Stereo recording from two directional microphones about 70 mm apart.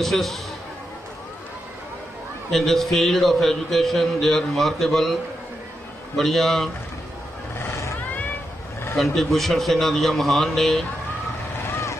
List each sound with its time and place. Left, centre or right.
0.0 s a man's voice: centre
2.5 s a man's voice: centre
6.1 s a man's voice: centre
7.5 s vehicle: left
8.9 s a man's voice: centre